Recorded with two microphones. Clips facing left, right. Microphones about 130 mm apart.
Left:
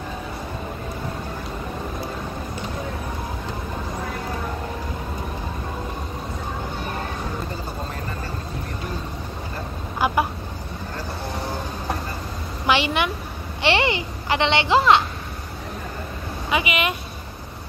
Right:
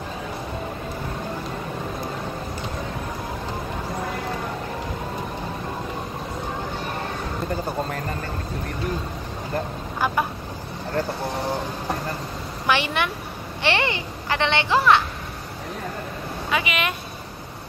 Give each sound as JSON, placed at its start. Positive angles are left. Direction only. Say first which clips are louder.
{"t": 9.9, "sound": "vehicle", "louder": "left 2 dB", "side_deg": 10}
{"t": 12.6, "sound": "a woman's voice", "louder": "left 2 dB", "side_deg": 15}
{"t": 16.4, "sound": "speech", "louder": "left 2 dB", "side_deg": 10}